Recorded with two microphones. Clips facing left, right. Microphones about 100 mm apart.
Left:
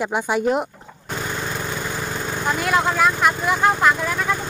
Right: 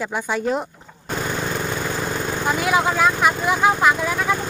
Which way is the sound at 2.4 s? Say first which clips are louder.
Even; 5° right (ahead or behind).